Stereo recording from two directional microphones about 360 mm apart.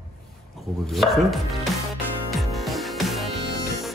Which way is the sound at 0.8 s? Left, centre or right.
Centre.